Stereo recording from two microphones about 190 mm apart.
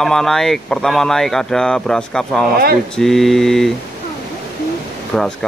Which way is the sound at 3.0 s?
Centre (ahead or behind).